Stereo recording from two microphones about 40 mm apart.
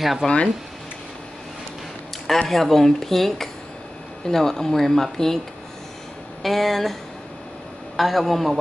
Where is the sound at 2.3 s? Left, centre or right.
Centre.